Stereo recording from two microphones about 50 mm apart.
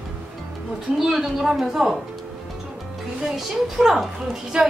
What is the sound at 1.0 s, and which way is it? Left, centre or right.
A woman's voice, centre.